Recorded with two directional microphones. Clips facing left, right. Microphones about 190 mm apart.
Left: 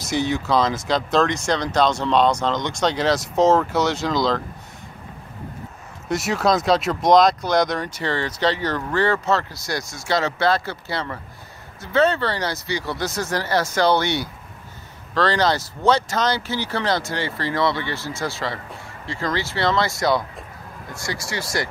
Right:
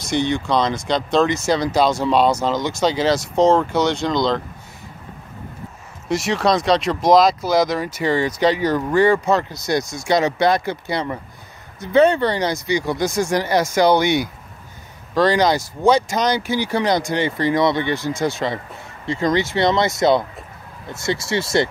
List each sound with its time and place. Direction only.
0.0 s speech: 5° left (ahead or behind)
6.0 s speech: centre (ahead or behind); by 21.6 s 25° right (ahead or behind)